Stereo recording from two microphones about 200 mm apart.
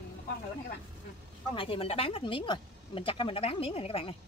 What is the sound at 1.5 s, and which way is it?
Speech, 25° left (ahead or behind).